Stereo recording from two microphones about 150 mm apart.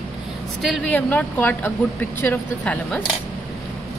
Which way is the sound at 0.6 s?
5° left (ahead or behind).